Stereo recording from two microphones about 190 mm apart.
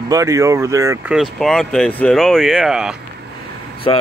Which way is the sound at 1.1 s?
Centre (ahead or behind).